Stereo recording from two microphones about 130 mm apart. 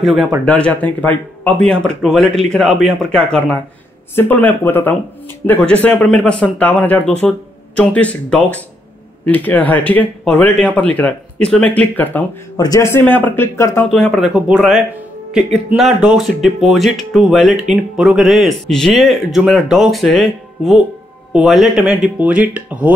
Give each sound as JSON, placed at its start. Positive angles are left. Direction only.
{"t": 0.0, "sound": "speech", "side_deg": 0}
{"t": 0.5, "sound": "speech", "side_deg": 10}
{"t": 12.5, "sound": "a man's voice", "side_deg": 30}
{"t": 13.9, "sound": "speech", "side_deg": 5}